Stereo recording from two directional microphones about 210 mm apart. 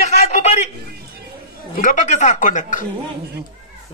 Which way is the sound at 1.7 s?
40° left (ahead or behind).